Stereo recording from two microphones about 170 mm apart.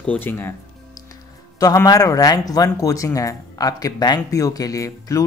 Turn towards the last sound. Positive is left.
turn(degrees=20)  # may be behind; listen again after turning